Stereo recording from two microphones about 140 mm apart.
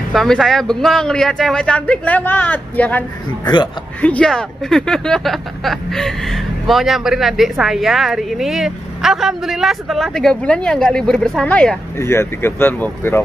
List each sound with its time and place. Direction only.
0.1 s speech: centre (ahead or behind)
12.0 s speech: 20° left (ahead or behind)